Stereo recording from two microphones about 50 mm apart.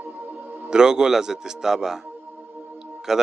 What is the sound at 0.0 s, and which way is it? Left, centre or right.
Music, right.